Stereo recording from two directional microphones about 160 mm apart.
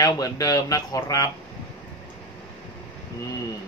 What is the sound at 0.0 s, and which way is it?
Speech, 20° left (ahead or behind).